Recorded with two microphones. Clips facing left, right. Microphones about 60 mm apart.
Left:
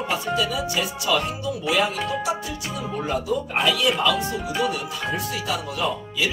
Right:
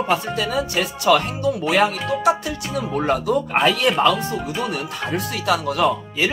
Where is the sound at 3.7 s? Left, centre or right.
Right.